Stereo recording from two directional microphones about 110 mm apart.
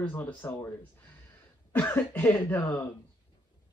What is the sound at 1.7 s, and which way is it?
Speech, 15° left (ahead or behind).